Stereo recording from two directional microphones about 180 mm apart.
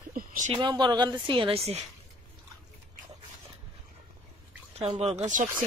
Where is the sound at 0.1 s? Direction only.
50° right (ahead or behind).